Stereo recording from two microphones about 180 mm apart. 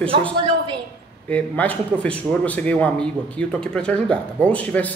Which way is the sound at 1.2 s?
10° left (ahead or behind).